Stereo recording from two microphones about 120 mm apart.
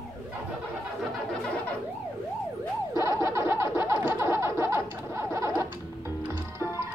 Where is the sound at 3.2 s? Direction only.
20° right (ahead or behind).